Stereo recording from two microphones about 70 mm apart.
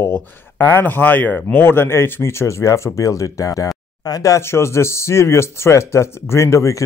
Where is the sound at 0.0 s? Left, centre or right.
Left.